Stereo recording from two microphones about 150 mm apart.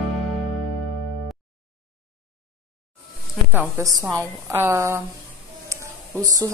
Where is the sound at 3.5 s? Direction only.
20° right (ahead or behind).